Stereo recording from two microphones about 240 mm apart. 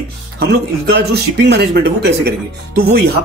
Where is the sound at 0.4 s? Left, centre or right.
Right.